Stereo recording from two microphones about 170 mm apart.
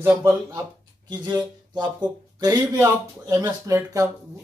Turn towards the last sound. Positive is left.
turn(degrees=-20)  # may be behind; listen again after turning